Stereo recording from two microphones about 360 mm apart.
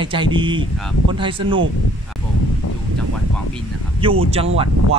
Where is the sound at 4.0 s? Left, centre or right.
Centre.